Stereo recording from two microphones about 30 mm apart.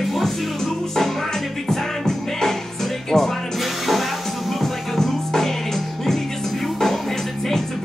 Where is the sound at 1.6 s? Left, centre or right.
Centre.